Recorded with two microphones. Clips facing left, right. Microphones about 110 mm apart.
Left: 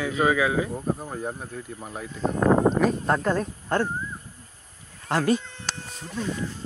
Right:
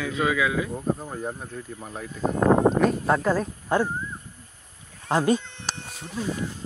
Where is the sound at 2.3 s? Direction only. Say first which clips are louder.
Right 1 dB; 30° right (ahead or behind).